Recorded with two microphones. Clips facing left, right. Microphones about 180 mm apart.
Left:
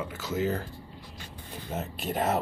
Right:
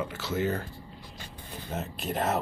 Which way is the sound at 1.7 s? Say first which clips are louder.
Left 1 dB; centre (ahead or behind).